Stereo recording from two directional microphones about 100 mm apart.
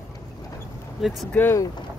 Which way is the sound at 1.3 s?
20° left (ahead or behind).